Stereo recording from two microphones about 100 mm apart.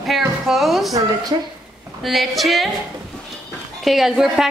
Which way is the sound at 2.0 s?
Centre (ahead or behind).